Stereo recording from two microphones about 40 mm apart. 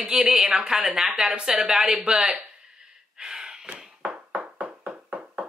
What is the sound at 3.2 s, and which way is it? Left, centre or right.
Gasp, right.